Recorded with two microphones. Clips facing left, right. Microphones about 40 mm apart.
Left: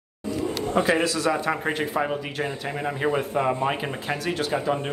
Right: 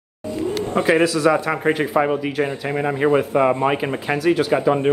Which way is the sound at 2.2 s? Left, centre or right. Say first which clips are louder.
Right 7 dB; centre.